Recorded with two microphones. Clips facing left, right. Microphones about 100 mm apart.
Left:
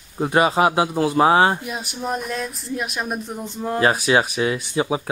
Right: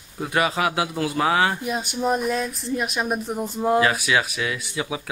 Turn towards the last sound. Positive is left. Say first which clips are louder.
# left 6 dB
turn(degrees=30)  # may be behind; listen again after turning